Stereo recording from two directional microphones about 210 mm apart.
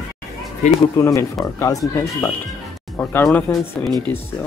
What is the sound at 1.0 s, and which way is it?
Speech, 15° left (ahead or behind).